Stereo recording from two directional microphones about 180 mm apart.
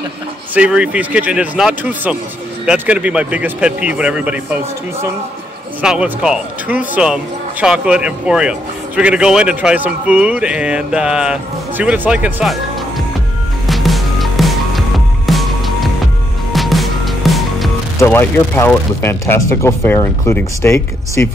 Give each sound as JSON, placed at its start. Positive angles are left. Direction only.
{"t": 0.6, "sound": "a man's voice", "side_deg": -5}
{"t": 5.8, "sound": "a man's voice", "side_deg": -5}
{"t": 13.7, "sound": "music", "side_deg": 0}
{"t": 17.9, "sound": "speech", "side_deg": 15}